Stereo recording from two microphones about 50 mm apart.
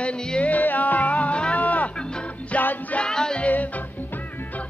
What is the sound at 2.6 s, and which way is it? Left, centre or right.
Music, left.